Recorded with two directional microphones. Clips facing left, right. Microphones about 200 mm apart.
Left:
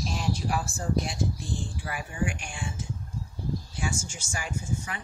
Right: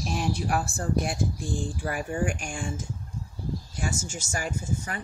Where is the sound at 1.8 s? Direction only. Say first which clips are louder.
Right 4 dB; 45° right (ahead or behind).